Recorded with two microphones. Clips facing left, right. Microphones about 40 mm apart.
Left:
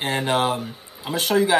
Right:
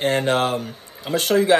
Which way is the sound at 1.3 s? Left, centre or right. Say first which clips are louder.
Right 3 dB; right.